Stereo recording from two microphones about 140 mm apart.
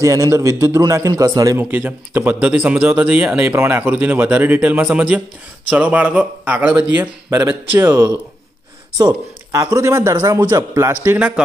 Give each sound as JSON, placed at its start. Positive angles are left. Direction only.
{"t": 0.0, "sound": "a man's voice", "side_deg": -20}
{"t": 1.6, "sound": "a man's voice", "side_deg": -10}